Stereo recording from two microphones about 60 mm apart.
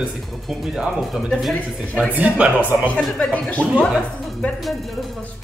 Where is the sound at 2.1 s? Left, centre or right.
Right.